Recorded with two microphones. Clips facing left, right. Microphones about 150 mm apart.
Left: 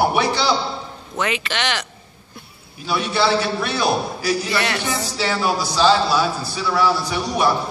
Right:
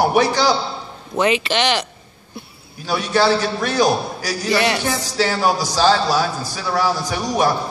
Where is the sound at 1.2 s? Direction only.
20° right (ahead or behind).